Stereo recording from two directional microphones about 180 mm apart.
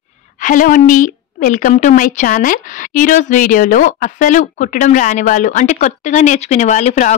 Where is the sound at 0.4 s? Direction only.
45° left (ahead or behind).